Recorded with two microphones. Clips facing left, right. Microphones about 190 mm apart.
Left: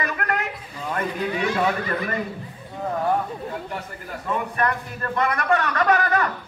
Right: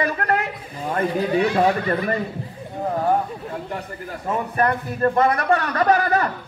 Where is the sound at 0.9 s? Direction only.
35° right (ahead or behind).